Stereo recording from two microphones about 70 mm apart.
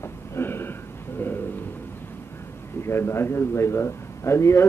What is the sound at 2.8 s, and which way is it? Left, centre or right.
Speech, left.